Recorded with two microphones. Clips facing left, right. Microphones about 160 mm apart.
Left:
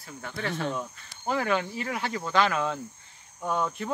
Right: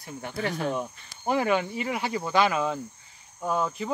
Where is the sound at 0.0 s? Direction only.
15° right (ahead or behind).